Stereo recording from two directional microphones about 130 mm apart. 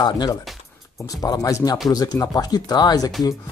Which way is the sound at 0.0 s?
30° left (ahead or behind).